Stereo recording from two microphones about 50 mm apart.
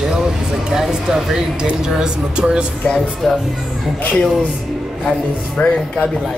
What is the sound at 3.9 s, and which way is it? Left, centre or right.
Speech, left.